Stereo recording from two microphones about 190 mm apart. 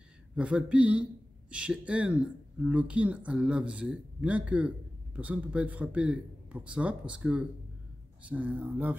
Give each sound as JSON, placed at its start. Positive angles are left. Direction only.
{"t": 0.4, "sound": "a man's voice", "side_deg": -5}